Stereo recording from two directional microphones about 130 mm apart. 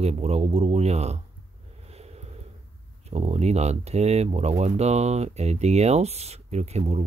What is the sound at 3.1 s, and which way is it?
Speech, 55° right (ahead or behind).